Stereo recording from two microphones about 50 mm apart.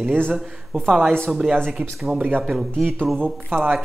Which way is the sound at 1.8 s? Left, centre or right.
Right.